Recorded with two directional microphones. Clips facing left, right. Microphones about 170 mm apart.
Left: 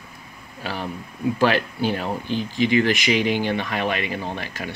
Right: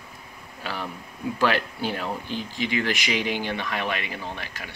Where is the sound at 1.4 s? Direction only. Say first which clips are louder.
Left 3 dB; 20° left (ahead or behind).